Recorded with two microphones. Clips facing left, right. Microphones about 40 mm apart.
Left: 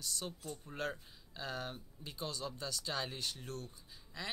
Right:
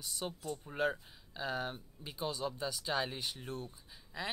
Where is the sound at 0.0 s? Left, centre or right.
Centre.